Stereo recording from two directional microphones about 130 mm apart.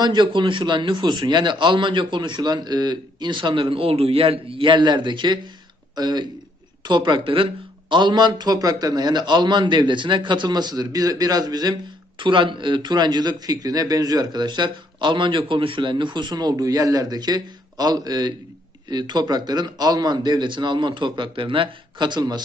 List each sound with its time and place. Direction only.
0.0 s a man's voice: 35° right (ahead or behind)